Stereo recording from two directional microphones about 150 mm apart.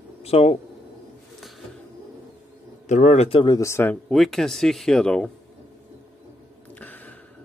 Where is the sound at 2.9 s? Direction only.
50° left (ahead or behind); by 4.0 s 15° left (ahead or behind).